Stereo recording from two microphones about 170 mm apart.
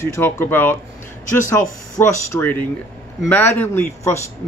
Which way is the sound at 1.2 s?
50° left (ahead or behind).